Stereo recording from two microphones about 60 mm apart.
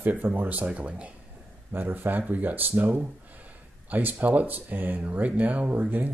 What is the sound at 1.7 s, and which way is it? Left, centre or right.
Speech, right.